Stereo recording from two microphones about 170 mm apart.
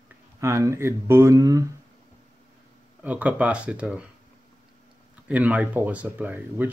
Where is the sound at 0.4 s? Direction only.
15° right (ahead or behind).